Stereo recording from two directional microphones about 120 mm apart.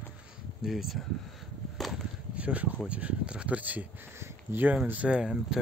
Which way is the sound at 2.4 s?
10° right (ahead or behind).